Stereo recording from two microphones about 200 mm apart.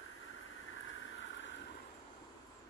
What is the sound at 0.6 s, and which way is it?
Vehicle, 75° left (ahead or behind).